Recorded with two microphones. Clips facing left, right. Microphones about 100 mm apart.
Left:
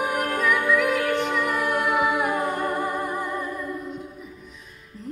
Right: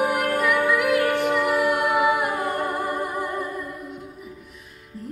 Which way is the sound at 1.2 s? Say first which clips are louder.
Right 4 dB; 5° right (ahead or behind).